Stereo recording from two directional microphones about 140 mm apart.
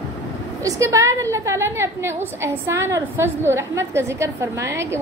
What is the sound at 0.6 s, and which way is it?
A woman's voice, 20° right (ahead or behind).